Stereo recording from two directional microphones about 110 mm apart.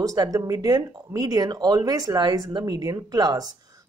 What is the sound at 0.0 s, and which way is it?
Speech, 35° right (ahead or behind).